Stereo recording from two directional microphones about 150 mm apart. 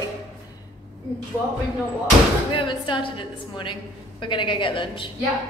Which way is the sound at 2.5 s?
30° left (ahead or behind).